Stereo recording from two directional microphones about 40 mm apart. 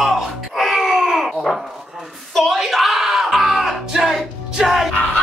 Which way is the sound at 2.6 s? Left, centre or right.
Centre.